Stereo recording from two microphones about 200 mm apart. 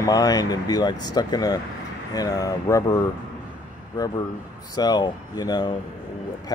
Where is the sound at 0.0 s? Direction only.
20° left (ahead or behind).